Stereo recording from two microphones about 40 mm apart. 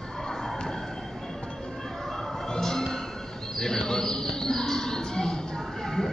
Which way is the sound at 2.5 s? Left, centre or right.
Centre.